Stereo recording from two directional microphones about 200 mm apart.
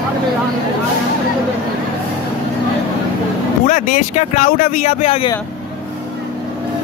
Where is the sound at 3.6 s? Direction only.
40° left (ahead or behind).